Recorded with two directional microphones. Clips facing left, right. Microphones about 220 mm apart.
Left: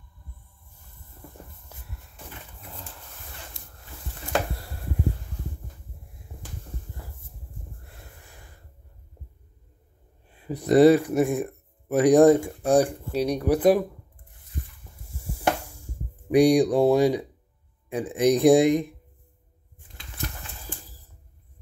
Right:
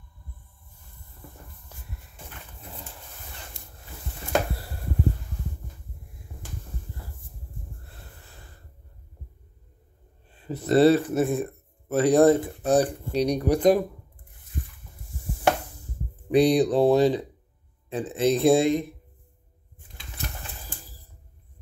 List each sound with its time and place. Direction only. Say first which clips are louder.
7.8 s snort: even; 15° left (ahead or behind)
10.3 s speech: left 2 dB; 15° left (ahead or behind)
16.3 s speech: left 2 dB; 10° left (ahead or behind)